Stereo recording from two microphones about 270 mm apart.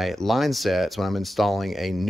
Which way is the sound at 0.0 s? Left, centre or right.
Centre.